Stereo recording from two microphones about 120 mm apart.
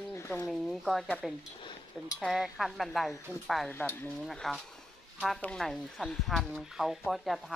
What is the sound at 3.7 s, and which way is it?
Speech, 15° left (ahead or behind).